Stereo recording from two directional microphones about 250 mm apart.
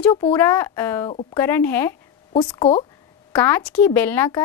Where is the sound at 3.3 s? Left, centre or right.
Centre.